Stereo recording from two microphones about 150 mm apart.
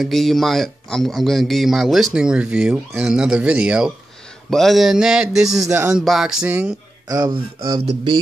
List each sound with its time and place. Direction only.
0.0 s speech: centre (ahead or behind)
5.7 s speech: 15° right (ahead or behind)
5.9 s speech: centre (ahead or behind)
7.1 s speech: 25° right (ahead or behind)